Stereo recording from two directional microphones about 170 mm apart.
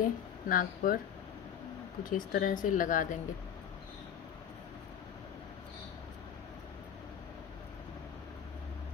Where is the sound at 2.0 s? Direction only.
55° left (ahead or behind).